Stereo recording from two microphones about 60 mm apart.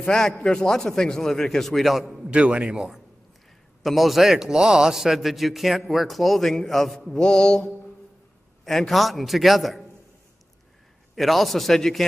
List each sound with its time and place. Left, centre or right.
0.0 s a man's voice: centre
2.3 s a man's voice: centre
3.8 s a man's voice: centre
8.6 s a man's voice: centre
11.1 s a man's voice: centre